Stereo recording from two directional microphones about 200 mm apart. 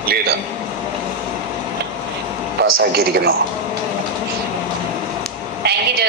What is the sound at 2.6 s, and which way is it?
Speech, 55° right (ahead or behind).